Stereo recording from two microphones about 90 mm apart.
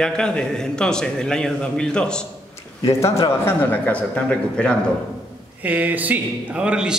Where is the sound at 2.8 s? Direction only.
35° left (ahead or behind).